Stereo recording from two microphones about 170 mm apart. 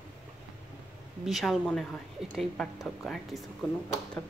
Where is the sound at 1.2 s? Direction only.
Centre (ahead or behind).